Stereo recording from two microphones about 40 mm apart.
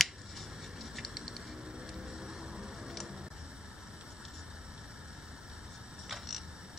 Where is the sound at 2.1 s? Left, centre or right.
Centre.